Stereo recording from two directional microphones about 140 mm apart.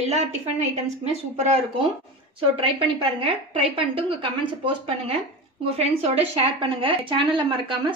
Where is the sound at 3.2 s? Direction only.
40° right (ahead or behind).